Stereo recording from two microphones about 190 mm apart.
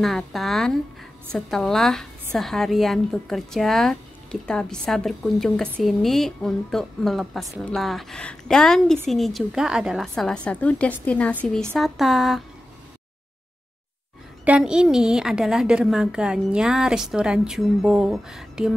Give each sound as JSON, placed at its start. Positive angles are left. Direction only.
{"t": 0.0, "sound": "a woman's voice", "side_deg": 0}
{"t": 14.4, "sound": "a woman's voice", "side_deg": -5}